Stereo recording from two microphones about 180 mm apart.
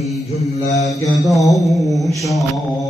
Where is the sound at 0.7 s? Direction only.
20° left (ahead or behind).